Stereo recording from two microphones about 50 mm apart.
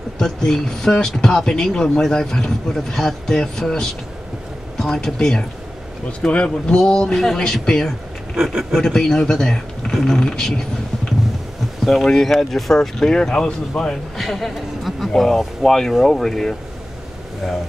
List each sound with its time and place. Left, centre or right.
0.2 s speech: centre
11.8 s speech: centre
14.1 s speech: centre